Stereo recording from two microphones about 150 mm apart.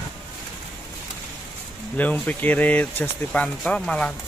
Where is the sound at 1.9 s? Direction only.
10° left (ahead or behind).